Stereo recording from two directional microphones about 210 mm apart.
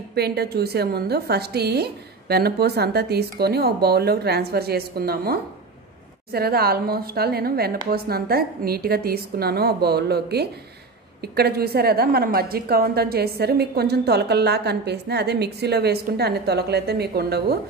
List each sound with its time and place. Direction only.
0.1 s a woman's voice: 50° right (ahead or behind)